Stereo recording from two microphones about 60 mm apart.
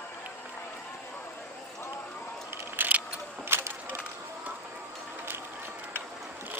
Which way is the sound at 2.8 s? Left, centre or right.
Right.